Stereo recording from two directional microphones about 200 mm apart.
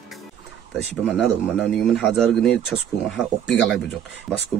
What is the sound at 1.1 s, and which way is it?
A man's voice, centre (ahead or behind).